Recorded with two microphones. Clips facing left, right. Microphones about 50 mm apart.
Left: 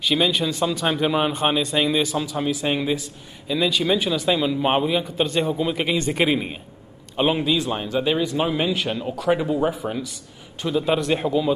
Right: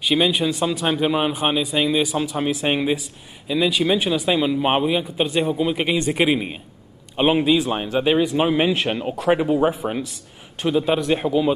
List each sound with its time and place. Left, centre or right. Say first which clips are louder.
0.0 s a man's voice: right 2 dB; centre
2.2 s a man's voice: right 2 dB; right
3.4 s a man's voice: right 2 dB; centre
10.8 s a man's voice: even; centre